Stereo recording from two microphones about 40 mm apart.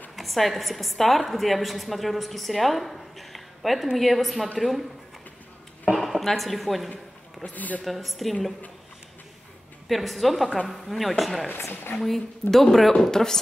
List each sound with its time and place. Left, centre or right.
0.1 s a woman's voice: centre
5.9 s speech: centre
7.5 s speech: left
7.8 s a woman's voice: centre
9.8 s a woman's voice: centre
11.5 s speech: left
12.0 s a woman's voice: centre